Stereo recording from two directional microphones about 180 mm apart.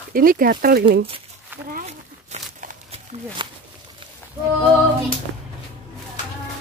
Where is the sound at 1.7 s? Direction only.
45° right (ahead or behind).